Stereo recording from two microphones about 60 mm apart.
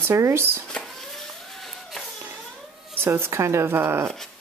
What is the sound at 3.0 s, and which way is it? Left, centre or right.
Speech, right.